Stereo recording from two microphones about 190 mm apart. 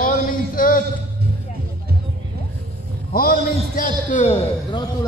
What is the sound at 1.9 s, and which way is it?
Vehicle, 55° right (ahead or behind).